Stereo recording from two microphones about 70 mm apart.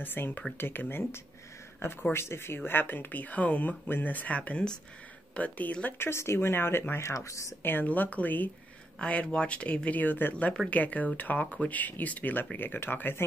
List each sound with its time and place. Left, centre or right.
0.0 s speech: left
5.9 s speech: left
7.6 s speech: left
10.3 s speech: centre; by 13.2 s left